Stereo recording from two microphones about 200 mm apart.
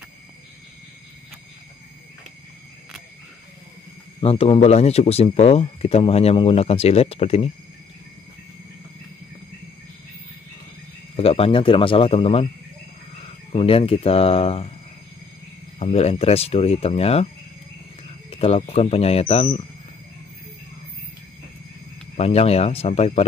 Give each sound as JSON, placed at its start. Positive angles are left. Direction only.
{"t": 4.2, "sound": "speech", "side_deg": 30}
{"t": 11.1, "sound": "speech", "side_deg": 30}
{"t": 13.5, "sound": "speech", "side_deg": 30}
{"t": 15.8, "sound": "speech", "side_deg": 30}
{"t": 18.4, "sound": "speech", "side_deg": 30}
{"t": 22.1, "sound": "speech", "side_deg": 30}